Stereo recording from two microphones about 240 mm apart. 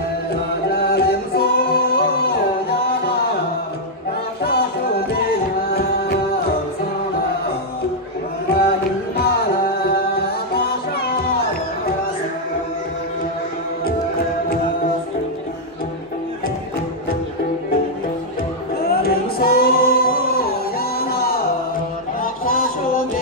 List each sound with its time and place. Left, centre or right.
0.7 s singing: left
4.4 s a sound: left
5.8 s music: left
8.5 s music: left
18.8 s singing: left
21.0 s music: left